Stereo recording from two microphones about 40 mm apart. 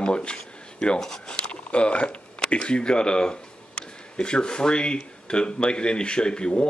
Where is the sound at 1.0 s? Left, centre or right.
Left.